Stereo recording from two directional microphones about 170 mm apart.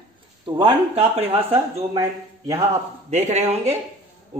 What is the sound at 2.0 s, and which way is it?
Speech, 20° right (ahead or behind).